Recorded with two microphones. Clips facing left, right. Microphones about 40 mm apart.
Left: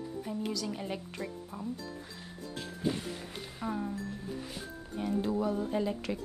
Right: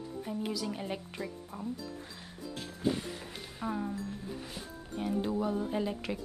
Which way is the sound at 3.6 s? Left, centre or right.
Centre.